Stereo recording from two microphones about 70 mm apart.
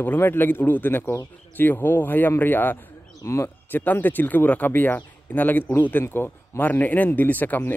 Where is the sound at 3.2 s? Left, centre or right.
Left.